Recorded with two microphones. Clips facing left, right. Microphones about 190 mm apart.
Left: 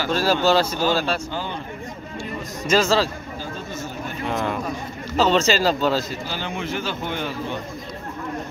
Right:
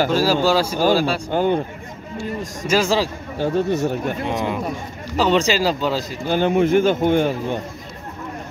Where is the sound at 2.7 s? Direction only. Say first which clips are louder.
Even; 15° right (ahead or behind).